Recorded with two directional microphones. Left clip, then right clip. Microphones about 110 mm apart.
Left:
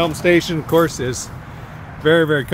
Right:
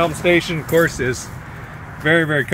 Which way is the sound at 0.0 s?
45° left (ahead or behind).